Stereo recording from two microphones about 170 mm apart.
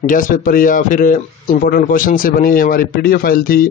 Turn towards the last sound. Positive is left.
turn(degrees=60)  # may be behind; listen again after turning